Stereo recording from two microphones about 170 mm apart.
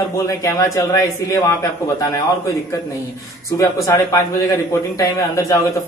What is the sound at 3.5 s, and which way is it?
A woman's voice, 20° left (ahead or behind).